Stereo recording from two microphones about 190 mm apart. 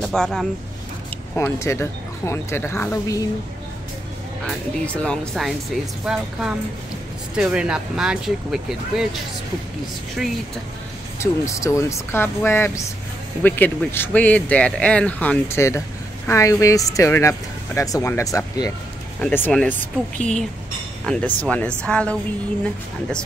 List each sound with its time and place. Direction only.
0.0 s speech: 5° left (ahead or behind)
1.3 s speech: 15° left (ahead or behind)
4.5 s speech: 5° left (ahead or behind)
7.3 s speech: 5° right (ahead or behind)
11.4 s speech: 15° left (ahead or behind)